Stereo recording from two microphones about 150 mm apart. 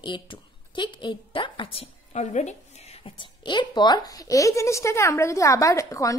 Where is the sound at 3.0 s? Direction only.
30° left (ahead or behind).